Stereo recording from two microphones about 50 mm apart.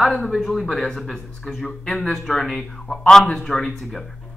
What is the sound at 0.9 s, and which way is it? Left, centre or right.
Speech, centre.